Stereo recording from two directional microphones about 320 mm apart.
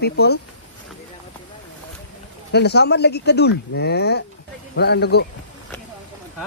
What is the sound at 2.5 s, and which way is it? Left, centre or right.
Speech, left.